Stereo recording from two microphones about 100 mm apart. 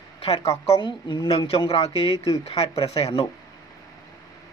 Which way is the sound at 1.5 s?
70° left (ahead or behind).